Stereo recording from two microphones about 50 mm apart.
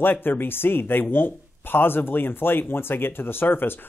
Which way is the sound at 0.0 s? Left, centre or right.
Left.